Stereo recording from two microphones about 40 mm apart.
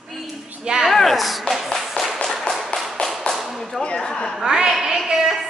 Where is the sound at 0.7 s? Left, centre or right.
Centre.